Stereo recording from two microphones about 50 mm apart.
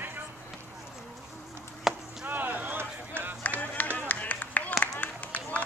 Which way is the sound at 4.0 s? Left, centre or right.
Left.